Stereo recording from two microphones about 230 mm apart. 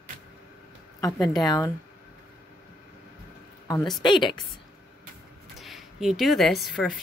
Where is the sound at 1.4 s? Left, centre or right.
Centre.